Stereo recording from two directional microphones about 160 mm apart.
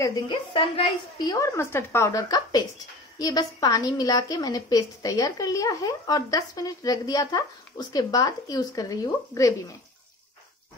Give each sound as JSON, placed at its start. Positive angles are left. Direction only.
{"t": 0.0, "sound": "a woman's voice", "side_deg": 25}